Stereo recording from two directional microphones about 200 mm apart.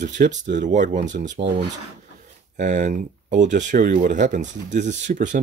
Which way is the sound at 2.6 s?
35° right (ahead or behind).